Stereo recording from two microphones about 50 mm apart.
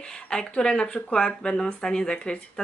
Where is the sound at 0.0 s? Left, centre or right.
Centre.